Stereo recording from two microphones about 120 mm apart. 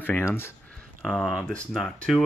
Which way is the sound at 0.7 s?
10° left (ahead or behind).